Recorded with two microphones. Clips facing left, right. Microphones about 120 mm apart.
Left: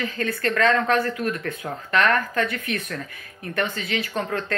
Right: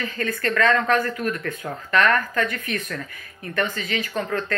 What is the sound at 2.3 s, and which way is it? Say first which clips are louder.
A woman's voice: even; 45° right (ahead or behind).